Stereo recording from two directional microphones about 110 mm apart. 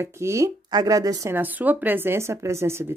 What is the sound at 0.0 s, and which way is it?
A woman's voice, 25° right (ahead or behind).